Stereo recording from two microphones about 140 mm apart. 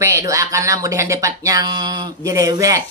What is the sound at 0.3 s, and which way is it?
Speech, 20° right (ahead or behind).